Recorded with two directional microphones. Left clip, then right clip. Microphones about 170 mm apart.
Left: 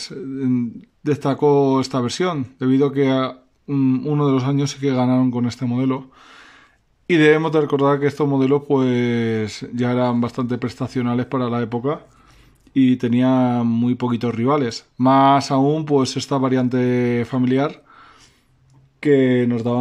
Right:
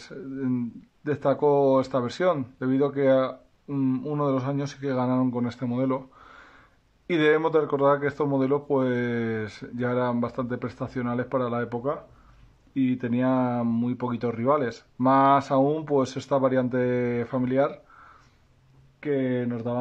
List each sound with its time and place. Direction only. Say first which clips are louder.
0.0 s speech: left 7 dB; 5° left (ahead or behind)
18.9 s speech: left 11 dB; 20° left (ahead or behind)